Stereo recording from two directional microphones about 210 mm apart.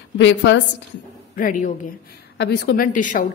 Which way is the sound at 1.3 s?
40° left (ahead or behind).